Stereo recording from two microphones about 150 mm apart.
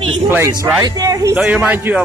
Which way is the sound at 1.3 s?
5° right (ahead or behind).